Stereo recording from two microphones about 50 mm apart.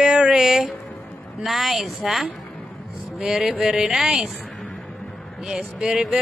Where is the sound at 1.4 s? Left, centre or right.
Centre.